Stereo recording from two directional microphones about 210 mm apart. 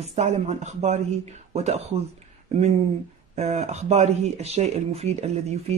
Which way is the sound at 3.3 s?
30° right (ahead or behind).